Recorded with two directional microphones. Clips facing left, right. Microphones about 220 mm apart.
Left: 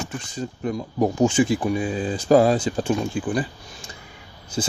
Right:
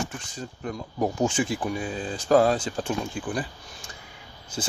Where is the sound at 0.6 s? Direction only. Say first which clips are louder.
Left 5 dB; 5° left (ahead or behind).